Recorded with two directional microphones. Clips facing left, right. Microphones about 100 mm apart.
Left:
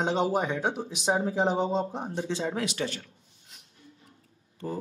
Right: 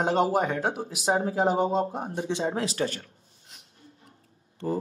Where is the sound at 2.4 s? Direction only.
35° right (ahead or behind).